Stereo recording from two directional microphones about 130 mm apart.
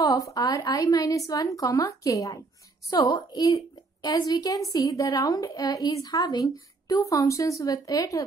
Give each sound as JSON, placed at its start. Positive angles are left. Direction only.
{"t": 0.0, "sound": "a woman's voice", "side_deg": 25}